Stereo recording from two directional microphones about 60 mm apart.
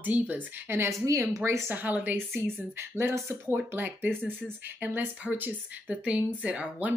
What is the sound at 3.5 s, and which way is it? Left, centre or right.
Speech, right.